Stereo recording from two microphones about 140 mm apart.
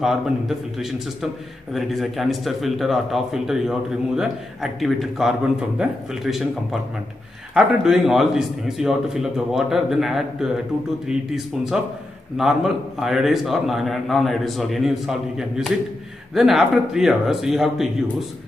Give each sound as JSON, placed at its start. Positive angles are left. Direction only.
{"t": 0.0, "sound": "a man's voice", "side_deg": 0}